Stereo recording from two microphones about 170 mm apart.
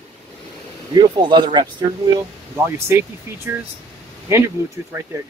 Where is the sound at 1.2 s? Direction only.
25° right (ahead or behind).